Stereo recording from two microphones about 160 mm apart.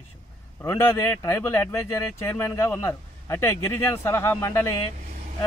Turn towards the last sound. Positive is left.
turn(degrees=20)  # may be behind; listen again after turning